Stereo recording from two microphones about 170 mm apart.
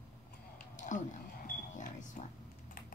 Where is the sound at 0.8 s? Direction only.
50° left (ahead or behind).